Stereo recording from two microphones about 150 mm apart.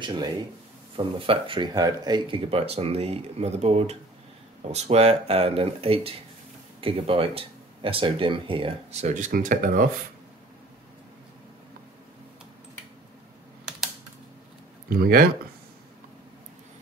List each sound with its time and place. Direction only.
0.0 s speech: 30° right (ahead or behind); by 9.8 s 65° right (ahead or behind)
14.9 s speech: 85° right